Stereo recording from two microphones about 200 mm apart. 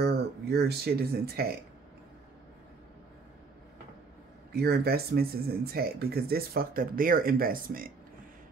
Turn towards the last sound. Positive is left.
turn(degrees=-45)  # may be behind; listen again after turning